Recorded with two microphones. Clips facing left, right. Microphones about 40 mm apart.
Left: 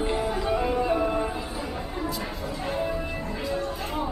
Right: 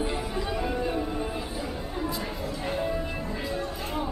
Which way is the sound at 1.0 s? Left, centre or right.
Left.